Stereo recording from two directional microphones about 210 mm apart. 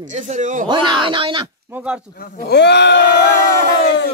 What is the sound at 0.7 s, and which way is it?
Speech, 20° right (ahead or behind).